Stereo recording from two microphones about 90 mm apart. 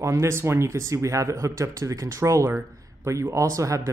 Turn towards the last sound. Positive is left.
turn(degrees=-35)  # may be behind; listen again after turning